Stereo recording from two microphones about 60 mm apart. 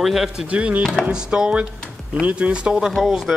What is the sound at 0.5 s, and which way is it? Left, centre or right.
Speech, right.